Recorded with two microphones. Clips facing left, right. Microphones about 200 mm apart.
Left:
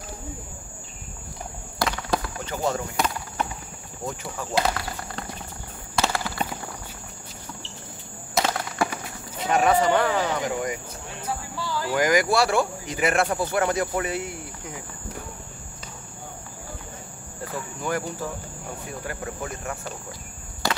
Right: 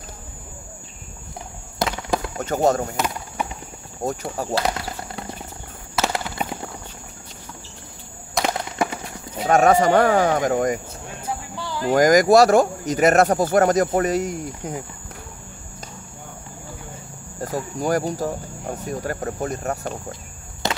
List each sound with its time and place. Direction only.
1.8 s fireworks: 25° right (ahead or behind)
2.3 s speech: 45° right (ahead or behind)
4.0 s speech: 40° right (ahead or behind)
6.4 s clip-clop: 10° right (ahead or behind)
8.4 s a sound: 20° right (ahead or behind)
9.5 s speech: 45° right (ahead or behind)
11.2 s a sound: 20° right (ahead or behind)
11.9 s speech: 40° right (ahead or behind)
17.4 s speech: 40° right (ahead or behind)
20.6 s walk: 20° right (ahead or behind)